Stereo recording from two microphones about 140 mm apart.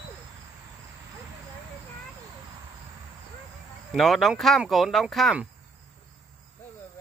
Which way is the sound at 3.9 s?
Centre (ahead or behind).